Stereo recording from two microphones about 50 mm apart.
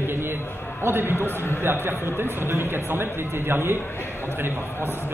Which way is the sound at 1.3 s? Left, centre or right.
Left.